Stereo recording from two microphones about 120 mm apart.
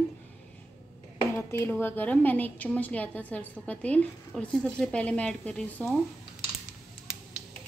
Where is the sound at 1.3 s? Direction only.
20° left (ahead or behind).